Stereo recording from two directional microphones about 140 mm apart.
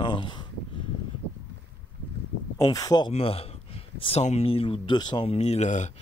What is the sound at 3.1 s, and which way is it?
Speech, 45° left (ahead or behind).